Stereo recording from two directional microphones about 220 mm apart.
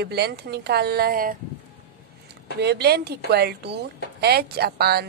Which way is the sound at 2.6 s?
50° right (ahead or behind).